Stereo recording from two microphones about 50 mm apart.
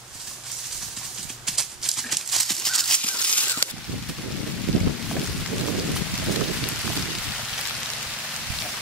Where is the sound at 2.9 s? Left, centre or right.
Left.